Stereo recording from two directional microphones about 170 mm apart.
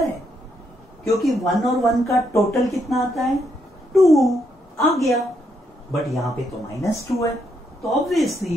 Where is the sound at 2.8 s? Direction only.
Centre (ahead or behind).